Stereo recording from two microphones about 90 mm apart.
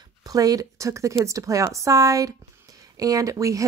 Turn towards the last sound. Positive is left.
turn(degrees=-40)  # may be behind; listen again after turning